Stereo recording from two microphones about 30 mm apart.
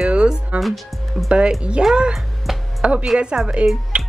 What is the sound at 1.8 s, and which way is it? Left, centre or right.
Speech, right.